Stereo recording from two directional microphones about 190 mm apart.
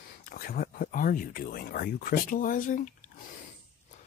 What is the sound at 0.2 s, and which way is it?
Speech, 50° left (ahead or behind).